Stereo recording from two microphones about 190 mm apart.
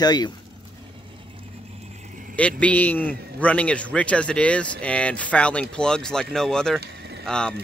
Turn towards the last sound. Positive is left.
turn(degrees=5)  # may be behind; listen again after turning